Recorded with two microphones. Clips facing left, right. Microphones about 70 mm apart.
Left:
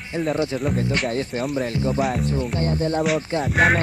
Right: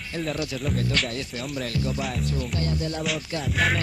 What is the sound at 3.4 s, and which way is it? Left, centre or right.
Speech, left.